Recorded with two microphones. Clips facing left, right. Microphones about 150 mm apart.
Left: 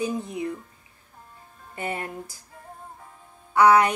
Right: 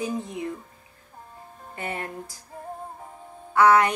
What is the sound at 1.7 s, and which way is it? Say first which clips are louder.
Speech: left 2 dB; 20° left (ahead or behind).